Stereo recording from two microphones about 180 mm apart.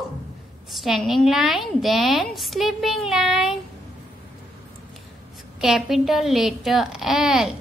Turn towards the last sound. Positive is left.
turn(degrees=0)  # may be behind; listen again after turning